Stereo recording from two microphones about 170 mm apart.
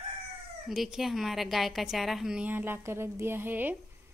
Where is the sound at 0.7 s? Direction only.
Centre (ahead or behind).